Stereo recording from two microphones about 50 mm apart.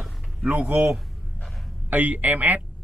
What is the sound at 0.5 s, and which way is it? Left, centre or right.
Speech, right.